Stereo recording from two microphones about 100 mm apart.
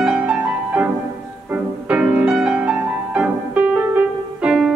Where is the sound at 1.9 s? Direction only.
15° right (ahead or behind).